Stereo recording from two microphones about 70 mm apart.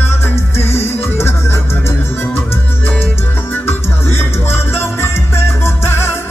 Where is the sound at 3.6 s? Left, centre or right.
Left.